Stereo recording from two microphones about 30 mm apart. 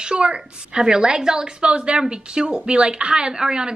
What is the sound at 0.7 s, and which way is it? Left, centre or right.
A woman's voice, right.